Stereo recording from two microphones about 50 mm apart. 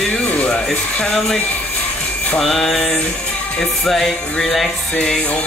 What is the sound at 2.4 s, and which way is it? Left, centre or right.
Music, centre.